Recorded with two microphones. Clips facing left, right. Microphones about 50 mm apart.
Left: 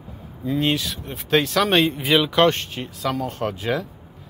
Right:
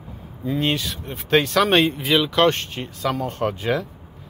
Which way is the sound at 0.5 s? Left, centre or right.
Centre.